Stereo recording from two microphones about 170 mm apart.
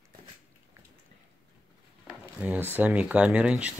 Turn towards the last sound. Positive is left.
turn(degrees=-5)  # may be behind; listen again after turning